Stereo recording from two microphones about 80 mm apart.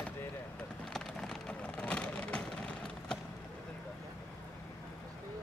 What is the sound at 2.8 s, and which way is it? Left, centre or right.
Vehicle, centre.